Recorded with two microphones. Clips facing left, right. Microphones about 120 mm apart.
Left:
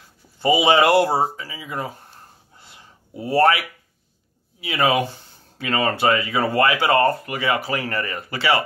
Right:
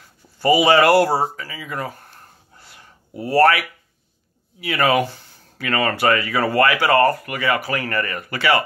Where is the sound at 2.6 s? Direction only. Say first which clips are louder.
Right 1 dB; 20° left (ahead or behind).